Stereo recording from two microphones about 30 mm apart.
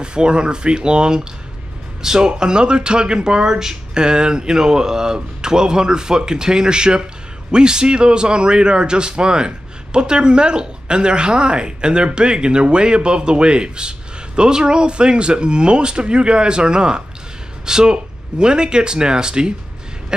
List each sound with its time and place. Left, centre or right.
0.0 s a man's voice: right
2.0 s a sound: centre
2.2 s a man's voice: right